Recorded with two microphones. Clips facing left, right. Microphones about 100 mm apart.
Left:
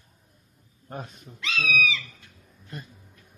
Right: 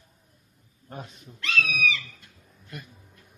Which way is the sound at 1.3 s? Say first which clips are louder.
Left 2 dB; centre (ahead or behind).